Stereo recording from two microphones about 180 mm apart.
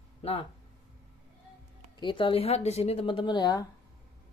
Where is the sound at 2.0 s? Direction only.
25° left (ahead or behind).